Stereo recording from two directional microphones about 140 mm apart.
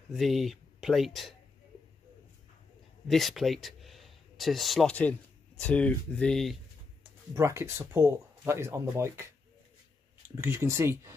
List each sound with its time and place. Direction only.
0.1 s speech: centre (ahead or behind)
3.1 s speech: centre (ahead or behind)
7.0 s speech: 20° right (ahead or behind)